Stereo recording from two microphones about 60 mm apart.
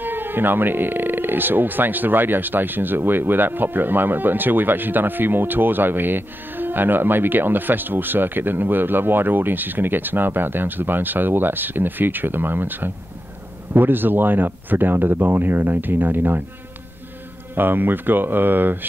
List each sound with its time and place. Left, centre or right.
0.0 s speech: right
17.6 s speech: right